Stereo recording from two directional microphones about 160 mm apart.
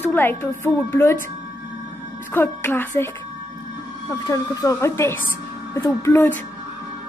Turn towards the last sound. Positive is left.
turn(degrees=15)  # may be behind; listen again after turning